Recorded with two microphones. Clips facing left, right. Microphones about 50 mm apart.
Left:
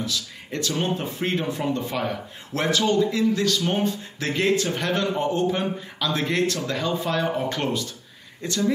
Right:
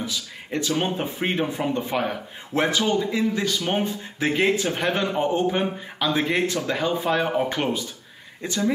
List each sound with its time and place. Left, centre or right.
0.0 s speech: centre